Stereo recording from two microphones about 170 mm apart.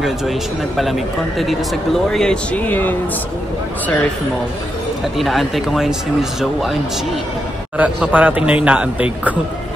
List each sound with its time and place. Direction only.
0.0 s speech: centre (ahead or behind)
2.0 s speech: 5° left (ahead or behind)
5.1 s a man's voice: centre (ahead or behind)